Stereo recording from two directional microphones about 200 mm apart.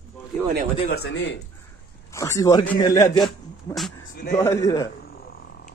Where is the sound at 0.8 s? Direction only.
55° left (ahead or behind).